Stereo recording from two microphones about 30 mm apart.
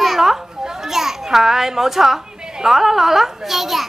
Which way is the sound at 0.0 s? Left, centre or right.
Centre.